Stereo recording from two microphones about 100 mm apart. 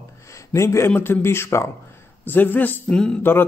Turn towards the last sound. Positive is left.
turn(degrees=20)  # may be behind; listen again after turning